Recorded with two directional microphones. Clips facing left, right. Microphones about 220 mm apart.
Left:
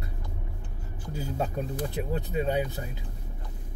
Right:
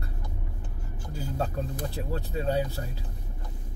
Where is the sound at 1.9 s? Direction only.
15° left (ahead or behind).